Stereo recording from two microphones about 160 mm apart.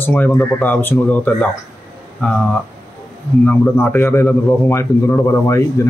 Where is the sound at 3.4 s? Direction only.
10° left (ahead or behind).